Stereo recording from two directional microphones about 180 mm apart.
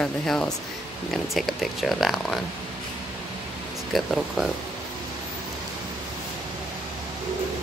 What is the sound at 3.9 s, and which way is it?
Speech, centre (ahead or behind).